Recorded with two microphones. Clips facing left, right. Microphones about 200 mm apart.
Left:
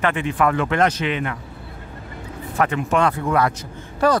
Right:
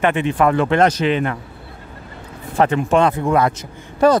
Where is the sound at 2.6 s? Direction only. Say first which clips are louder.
Right 4 dB; 30° right (ahead or behind).